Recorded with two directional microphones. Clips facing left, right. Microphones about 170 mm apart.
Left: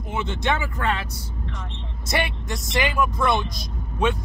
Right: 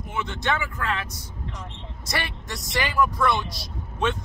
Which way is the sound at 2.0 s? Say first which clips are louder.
Left 5 dB; 20° left (ahead or behind).